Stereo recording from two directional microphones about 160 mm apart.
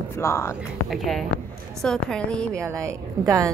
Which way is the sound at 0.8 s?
Centre (ahead or behind).